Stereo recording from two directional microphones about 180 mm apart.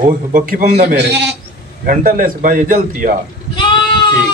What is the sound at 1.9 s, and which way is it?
A man's voice, 50° right (ahead or behind).